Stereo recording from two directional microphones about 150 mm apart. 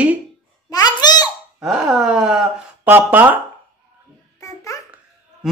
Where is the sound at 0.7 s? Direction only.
25° left (ahead or behind).